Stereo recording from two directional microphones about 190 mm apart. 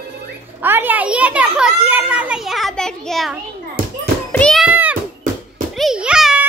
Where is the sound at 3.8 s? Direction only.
50° right (ahead or behind).